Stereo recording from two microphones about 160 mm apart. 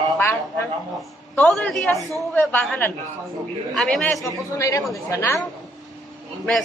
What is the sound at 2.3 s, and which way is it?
A man's voice, 10° left (ahead or behind).